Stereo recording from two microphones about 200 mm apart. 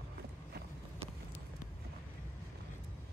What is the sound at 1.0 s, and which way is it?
Clip-clop, 30° right (ahead or behind).